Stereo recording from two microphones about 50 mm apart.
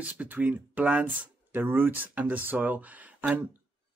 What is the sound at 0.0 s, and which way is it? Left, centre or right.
A man's voice, right.